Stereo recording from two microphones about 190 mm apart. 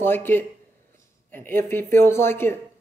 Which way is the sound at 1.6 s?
10° left (ahead or behind).